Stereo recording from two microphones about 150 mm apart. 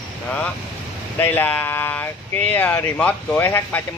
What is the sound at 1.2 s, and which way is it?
Speech, 10° left (ahead or behind).